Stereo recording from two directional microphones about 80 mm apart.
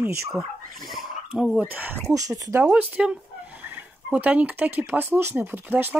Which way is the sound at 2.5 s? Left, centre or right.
Centre.